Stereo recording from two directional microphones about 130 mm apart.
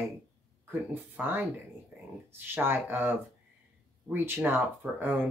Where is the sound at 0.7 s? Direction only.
15° right (ahead or behind).